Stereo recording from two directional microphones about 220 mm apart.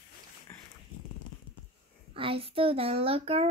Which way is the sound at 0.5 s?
10° left (ahead or behind).